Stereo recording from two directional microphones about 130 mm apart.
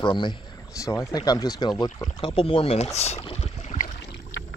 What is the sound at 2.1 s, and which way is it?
Speech, 45° left (ahead or behind).